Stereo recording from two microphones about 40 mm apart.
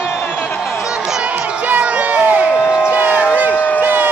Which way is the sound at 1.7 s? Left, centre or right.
Right.